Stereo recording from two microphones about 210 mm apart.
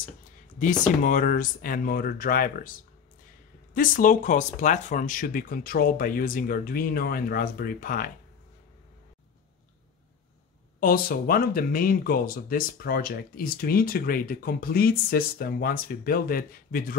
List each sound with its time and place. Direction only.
0.6 s speech: 40° left (ahead or behind)
3.7 s speech: 40° left (ahead or behind)
10.8 s speech: 45° left (ahead or behind)